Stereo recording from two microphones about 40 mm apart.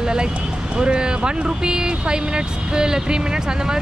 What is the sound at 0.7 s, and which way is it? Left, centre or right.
Speech, right.